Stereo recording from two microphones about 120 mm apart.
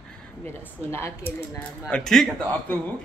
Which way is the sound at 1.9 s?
5° left (ahead or behind).